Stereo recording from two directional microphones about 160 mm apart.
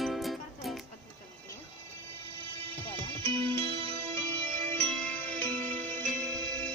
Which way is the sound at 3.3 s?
35° right (ahead or behind).